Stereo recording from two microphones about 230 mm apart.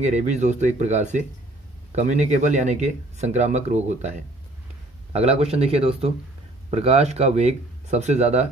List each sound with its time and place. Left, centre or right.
0.0 s speech: right
5.1 s speech: right